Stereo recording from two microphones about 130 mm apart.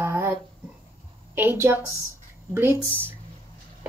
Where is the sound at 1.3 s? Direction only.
20° right (ahead or behind).